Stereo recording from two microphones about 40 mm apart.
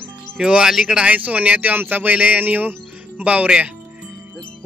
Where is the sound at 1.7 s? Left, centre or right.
Right.